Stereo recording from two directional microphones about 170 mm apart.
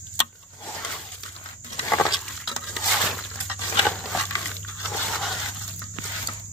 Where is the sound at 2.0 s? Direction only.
Centre (ahead or behind).